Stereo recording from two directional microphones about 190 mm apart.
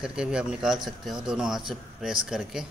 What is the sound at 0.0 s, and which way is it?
Speech, 5° right (ahead or behind).